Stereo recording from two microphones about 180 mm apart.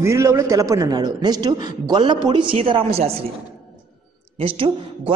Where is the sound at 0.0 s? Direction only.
15° right (ahead or behind); by 3.1 s 35° right (ahead or behind).